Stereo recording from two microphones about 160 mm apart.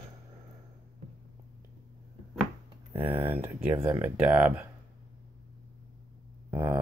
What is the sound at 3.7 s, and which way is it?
Speech, 25° right (ahead or behind).